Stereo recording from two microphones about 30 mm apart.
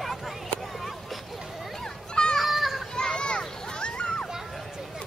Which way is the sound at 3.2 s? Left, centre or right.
Left.